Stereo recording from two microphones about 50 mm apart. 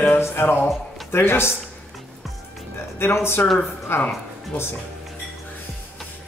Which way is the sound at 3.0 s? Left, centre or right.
Left.